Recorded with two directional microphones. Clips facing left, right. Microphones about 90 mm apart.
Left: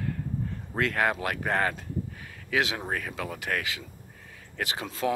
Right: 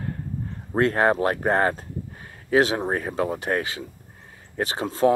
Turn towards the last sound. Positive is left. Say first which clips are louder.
# right 9 dB
turn(degrees=-35)  # may be behind; listen again after turning